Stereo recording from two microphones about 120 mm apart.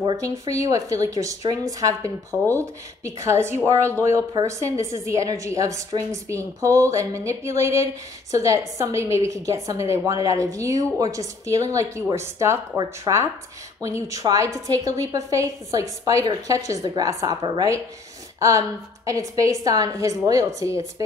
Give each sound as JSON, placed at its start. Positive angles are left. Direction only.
{"t": 0.0, "sound": "a woman's voice", "side_deg": -30}